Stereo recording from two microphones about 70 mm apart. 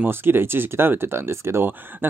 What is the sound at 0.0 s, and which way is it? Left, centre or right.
Speech, right.